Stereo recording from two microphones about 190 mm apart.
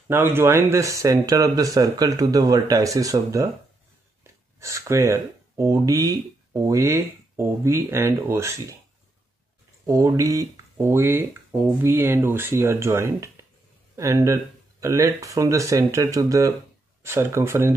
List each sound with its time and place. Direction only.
0.1 s speech: 10° right (ahead or behind)
9.8 s speech: 15° right (ahead or behind)